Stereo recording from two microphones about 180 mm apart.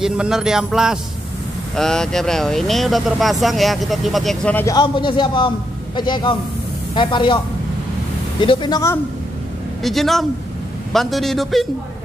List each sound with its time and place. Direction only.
0.0 s speech: 5° right (ahead or behind)
4.6 s a man's voice: 25° left (ahead or behind)
8.4 s a man's voice: 25° left (ahead or behind)
9.8 s speech: centre (ahead or behind)